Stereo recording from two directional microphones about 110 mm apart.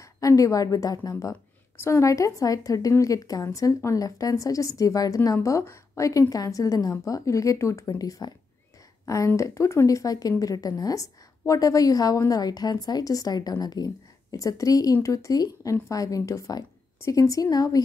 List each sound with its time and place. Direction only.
0.0 s a woman's voice: 30° left (ahead or behind)